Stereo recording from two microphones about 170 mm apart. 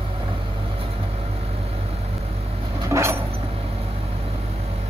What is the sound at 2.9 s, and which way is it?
Vehicle, 15° right (ahead or behind).